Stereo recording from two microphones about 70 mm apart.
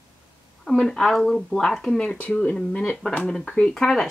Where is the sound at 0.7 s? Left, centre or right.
Centre.